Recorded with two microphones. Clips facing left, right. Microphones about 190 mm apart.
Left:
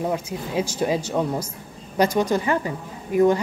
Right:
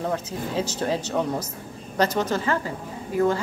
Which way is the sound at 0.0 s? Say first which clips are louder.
Left 2 dB; 10° left (ahead or behind).